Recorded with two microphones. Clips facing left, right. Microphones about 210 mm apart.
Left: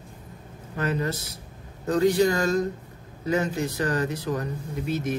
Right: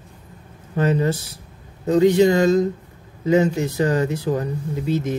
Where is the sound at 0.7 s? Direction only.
30° right (ahead or behind).